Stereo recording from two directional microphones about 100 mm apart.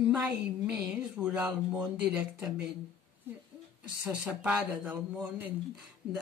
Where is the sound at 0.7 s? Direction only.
5° right (ahead or behind).